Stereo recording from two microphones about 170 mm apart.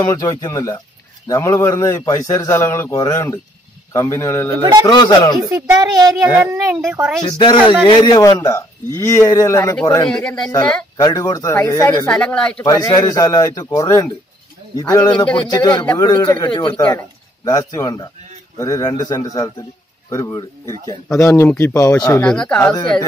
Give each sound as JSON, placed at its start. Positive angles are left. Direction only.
{"t": 0.0, "sound": "a man's voice", "side_deg": 20}
{"t": 4.6, "sound": "speech", "side_deg": -25}
{"t": 4.8, "sound": "a man's voice", "side_deg": 25}
{"t": 5.5, "sound": "speech", "side_deg": -20}
{"t": 6.9, "sound": "speech", "side_deg": -10}
{"t": 7.2, "sound": "a man's voice", "side_deg": 30}
{"t": 10.0, "sound": "speech", "side_deg": 5}
{"t": 11.0, "sound": "a man's voice", "side_deg": 20}
{"t": 12.1, "sound": "speech", "side_deg": 5}
{"t": 12.6, "sound": "a man's voice", "side_deg": 20}
{"t": 22.3, "sound": "speech", "side_deg": 5}